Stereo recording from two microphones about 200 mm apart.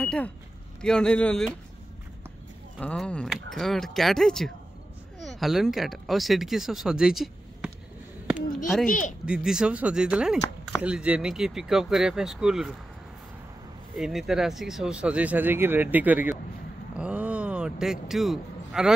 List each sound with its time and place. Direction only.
0.0 s speech: 5° left (ahead or behind)
2.8 s speech: 5° left (ahead or behind)
8.8 s speech: 40° left (ahead or behind)
9.2 s speech: 5° right (ahead or behind)
13.9 s speech: centre (ahead or behind)
16.9 s a sound: 5° right (ahead or behind)